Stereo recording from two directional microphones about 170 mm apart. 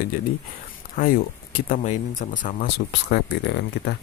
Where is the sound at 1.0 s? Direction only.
55° left (ahead or behind).